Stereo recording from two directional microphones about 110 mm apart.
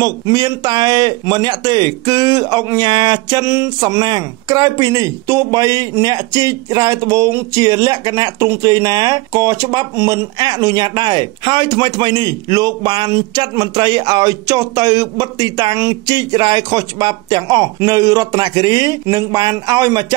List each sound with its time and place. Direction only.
0.0 s speech: 40° right (ahead or behind)